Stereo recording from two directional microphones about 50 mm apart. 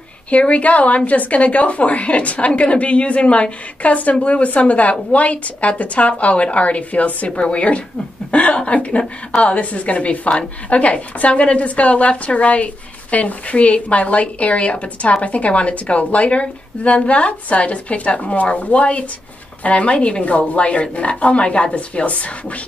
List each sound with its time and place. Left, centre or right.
0.3 s a woman's voice: left